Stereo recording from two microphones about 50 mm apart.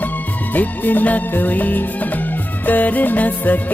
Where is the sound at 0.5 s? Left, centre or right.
Left.